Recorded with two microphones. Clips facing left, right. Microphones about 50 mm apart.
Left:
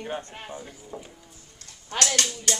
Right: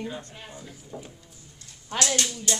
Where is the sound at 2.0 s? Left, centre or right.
Left.